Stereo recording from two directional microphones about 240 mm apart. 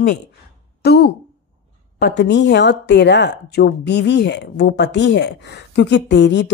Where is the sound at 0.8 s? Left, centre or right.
Left.